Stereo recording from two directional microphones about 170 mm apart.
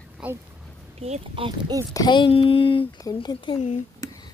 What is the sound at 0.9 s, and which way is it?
Speech, 40° right (ahead or behind).